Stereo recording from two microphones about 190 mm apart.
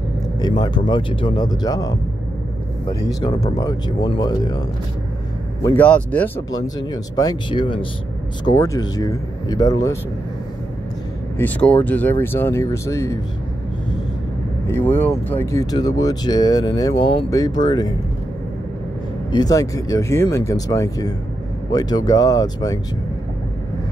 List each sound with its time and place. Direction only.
0.4 s speech: 20° left (ahead or behind)
6.5 s speech: 20° left (ahead or behind)
11.3 s speech: 10° left (ahead or behind)
14.7 s speech: 10° left (ahead or behind)
19.3 s speech: 20° left (ahead or behind)